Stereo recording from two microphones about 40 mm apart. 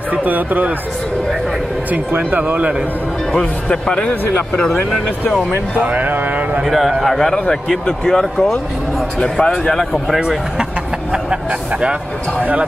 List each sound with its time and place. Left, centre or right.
0.1 s speech: right
2.1 s speech: right
3.8 s a man's voice: left
5.8 s speech: right
7.0 s a man's voice: centre
7.8 s speech: centre
9.2 s a man's voice: left